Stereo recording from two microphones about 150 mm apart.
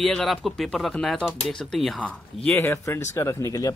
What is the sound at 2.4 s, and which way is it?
Speech, 15° left (ahead or behind).